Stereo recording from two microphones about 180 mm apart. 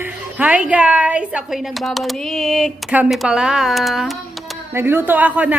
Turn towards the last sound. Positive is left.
turn(degrees=-10)  # may be behind; listen again after turning